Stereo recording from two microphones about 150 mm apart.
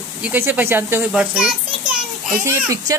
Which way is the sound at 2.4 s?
20° right (ahead or behind).